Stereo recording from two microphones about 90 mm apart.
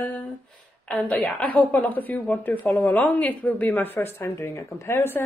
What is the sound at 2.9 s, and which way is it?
Speech, 15° left (ahead or behind).